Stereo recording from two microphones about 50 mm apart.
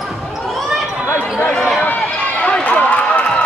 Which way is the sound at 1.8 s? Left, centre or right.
Left.